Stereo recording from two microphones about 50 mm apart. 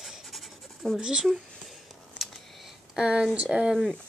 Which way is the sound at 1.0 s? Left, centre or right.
Centre.